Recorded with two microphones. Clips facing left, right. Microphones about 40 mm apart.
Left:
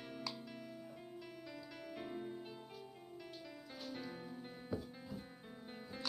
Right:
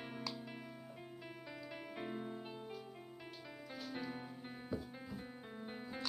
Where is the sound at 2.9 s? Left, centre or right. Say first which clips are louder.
Even; right.